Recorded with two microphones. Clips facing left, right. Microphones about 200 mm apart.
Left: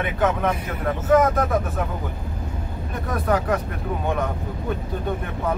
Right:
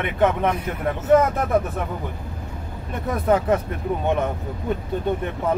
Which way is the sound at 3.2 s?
25° right (ahead or behind).